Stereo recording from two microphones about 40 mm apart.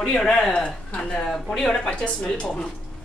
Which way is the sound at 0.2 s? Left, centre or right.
Centre.